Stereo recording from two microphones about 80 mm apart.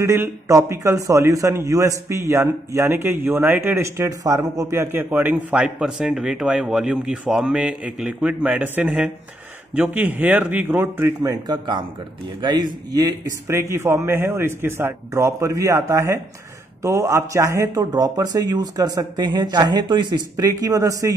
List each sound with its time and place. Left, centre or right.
0.0 s a man's voice: right
5.1 s a man's voice: centre
11.4 s a man's voice: right
13.5 s a man's voice: right
19.3 s speech: right